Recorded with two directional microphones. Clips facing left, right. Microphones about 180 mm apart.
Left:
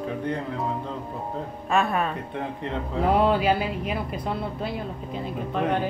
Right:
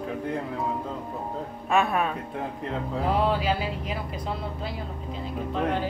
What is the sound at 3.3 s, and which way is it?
Music, 55° left (ahead or behind).